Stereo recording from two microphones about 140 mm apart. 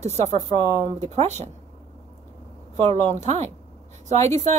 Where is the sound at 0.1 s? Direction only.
55° right (ahead or behind).